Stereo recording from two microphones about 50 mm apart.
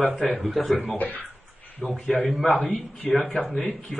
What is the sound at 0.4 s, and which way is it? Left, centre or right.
Speech, centre.